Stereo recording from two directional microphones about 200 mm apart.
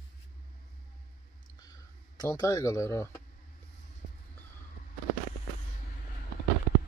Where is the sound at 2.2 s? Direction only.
15° left (ahead or behind).